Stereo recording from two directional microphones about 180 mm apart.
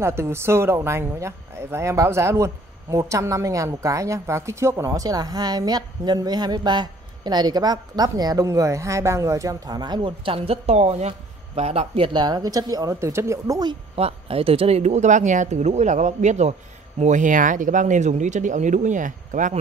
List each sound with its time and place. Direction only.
0.0 s speech: 15° right (ahead or behind); by 19.6 s 45° right (ahead or behind)